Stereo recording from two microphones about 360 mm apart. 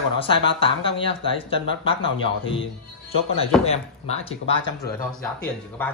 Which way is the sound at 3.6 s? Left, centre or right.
Centre.